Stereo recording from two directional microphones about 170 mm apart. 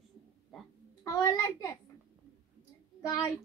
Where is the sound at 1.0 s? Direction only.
20° left (ahead or behind).